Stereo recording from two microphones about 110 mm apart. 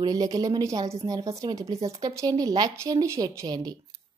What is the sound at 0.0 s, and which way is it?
A woman's voice, 35° right (ahead or behind).